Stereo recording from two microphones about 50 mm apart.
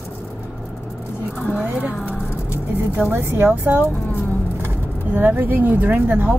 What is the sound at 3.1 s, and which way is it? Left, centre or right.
Speech, right.